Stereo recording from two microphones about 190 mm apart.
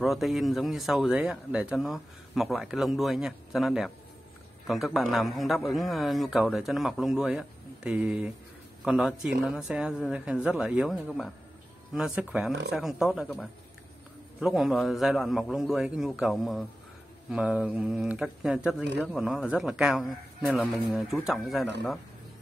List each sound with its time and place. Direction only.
0.0 s speech: centre (ahead or behind)